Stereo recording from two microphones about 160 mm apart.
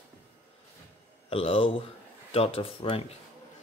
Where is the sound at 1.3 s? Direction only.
35° left (ahead or behind).